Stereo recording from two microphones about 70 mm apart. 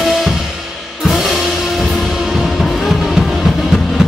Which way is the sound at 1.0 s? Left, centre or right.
Centre.